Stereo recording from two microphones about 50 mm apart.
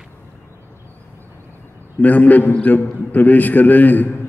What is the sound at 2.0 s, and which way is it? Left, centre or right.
A man's voice, left.